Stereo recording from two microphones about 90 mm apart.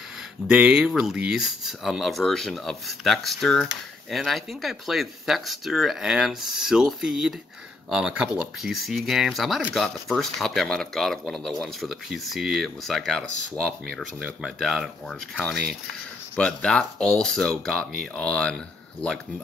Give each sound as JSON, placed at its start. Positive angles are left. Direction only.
{"t": 0.5, "sound": "speech", "side_deg": -15}
{"t": 8.7, "sound": "speech", "side_deg": 0}
{"t": 15.0, "sound": "speech", "side_deg": 10}